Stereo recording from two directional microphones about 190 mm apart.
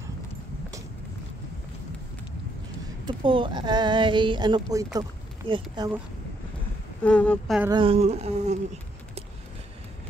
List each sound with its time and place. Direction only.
3.1 s speech: 25° right (ahead or behind)
7.0 s speech: 5° left (ahead or behind)
7.7 s speech: 30° right (ahead or behind)